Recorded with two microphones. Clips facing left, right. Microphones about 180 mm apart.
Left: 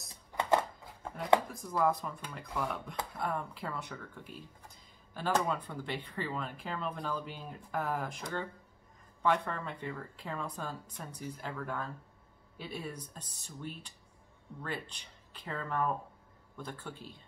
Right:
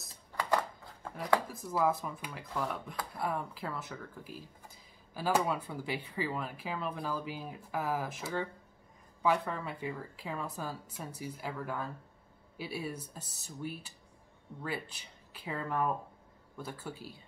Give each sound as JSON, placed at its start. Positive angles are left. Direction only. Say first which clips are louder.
{"t": 0.3, "sound": "chopping", "louder": "left 2 dB", "side_deg": 25}
{"t": 1.5, "sound": "speech", "louder": "even", "side_deg": -5}